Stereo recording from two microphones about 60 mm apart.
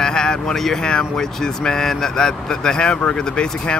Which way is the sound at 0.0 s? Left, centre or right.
Centre.